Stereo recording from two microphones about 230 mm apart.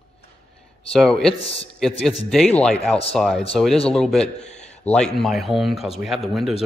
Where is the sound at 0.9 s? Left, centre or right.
Centre.